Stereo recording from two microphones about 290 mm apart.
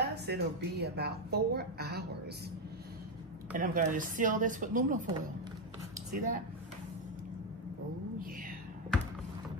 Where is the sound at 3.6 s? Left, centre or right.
Right.